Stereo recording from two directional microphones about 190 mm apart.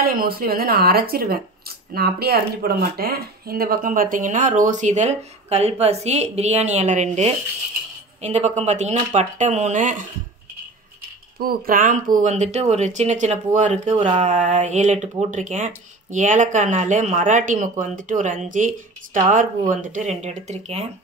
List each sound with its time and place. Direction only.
0.0 s speech: 50° right (ahead or behind)
11.3 s speech: 50° right (ahead or behind); by 20.9 s 35° right (ahead or behind)